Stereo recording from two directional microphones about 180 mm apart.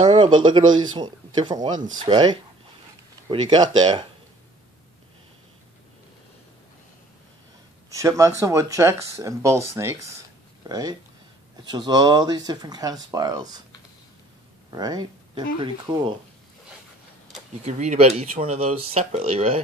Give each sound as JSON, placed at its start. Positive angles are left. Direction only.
{"t": 0.0, "sound": "speech", "side_deg": -25}
{"t": 0.7, "sound": "speech", "side_deg": -90}
{"t": 0.9, "sound": "speech", "side_deg": -25}
{"t": 7.9, "sound": "speech", "side_deg": -15}
{"t": 14.7, "sound": "speech", "side_deg": -20}
{"t": 17.6, "sound": "speech", "side_deg": -40}